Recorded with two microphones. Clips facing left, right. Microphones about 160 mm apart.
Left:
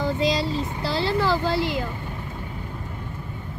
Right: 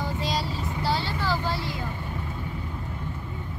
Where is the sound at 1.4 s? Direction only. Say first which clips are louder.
Left 7 dB; 90° left.